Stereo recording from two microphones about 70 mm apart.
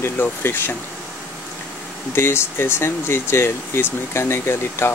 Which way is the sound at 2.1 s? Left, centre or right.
Left.